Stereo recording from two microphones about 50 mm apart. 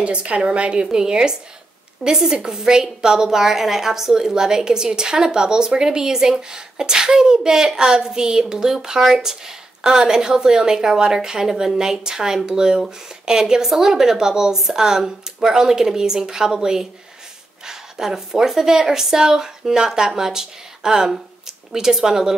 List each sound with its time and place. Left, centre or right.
0.0 s a woman's voice: right